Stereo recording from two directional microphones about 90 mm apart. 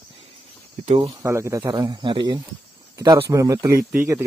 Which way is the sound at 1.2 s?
35° right (ahead or behind).